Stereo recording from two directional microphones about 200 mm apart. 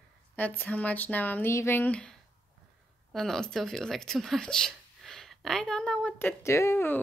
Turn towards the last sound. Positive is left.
turn(degrees=10)  # may be behind; listen again after turning